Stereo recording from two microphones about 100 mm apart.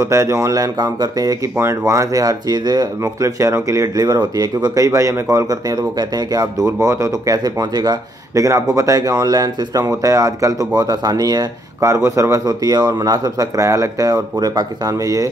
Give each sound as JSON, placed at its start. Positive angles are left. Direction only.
{"t": 0.0, "sound": "speech", "side_deg": -30}
{"t": 3.0, "sound": "speech", "side_deg": -30}